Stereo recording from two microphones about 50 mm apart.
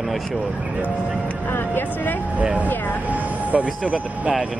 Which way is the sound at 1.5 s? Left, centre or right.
Left.